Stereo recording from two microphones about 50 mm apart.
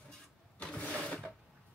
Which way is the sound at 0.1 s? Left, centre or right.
Centre.